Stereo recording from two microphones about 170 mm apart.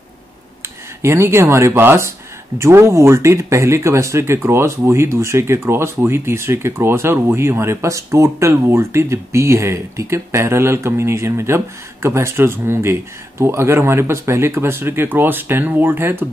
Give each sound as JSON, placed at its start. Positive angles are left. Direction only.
{"t": 0.6, "sound": "speech", "side_deg": -15}